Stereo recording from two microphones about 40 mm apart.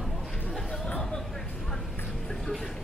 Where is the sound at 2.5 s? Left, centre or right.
Centre.